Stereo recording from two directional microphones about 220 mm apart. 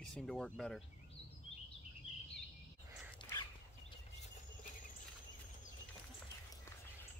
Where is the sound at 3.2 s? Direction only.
20° left (ahead or behind).